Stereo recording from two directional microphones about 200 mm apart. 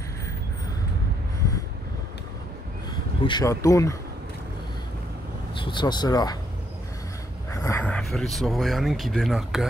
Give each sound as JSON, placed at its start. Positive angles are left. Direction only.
{"t": 3.3, "sound": "speech", "side_deg": 20}
{"t": 5.7, "sound": "speech", "side_deg": 20}
{"t": 7.5, "sound": "speech", "side_deg": 15}